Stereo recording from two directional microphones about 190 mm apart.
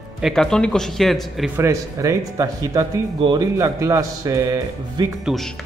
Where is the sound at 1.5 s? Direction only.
15° right (ahead or behind).